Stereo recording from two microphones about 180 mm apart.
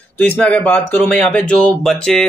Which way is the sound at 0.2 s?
5° left (ahead or behind).